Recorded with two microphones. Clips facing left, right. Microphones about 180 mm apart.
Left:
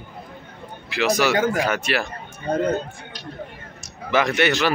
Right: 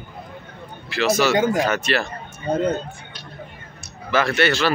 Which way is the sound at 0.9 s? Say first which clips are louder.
Right 1 dB; 15° left (ahead or behind).